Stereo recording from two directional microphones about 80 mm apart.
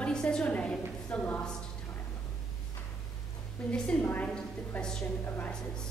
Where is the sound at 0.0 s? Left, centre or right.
Centre.